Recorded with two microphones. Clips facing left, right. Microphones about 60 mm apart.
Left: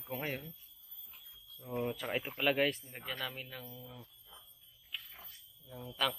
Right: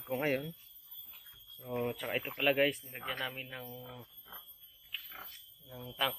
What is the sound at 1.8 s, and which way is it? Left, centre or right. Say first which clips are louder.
Speech: even; centre.